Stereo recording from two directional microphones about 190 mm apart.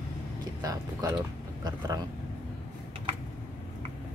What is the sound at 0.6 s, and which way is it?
Speech, 20° right (ahead or behind).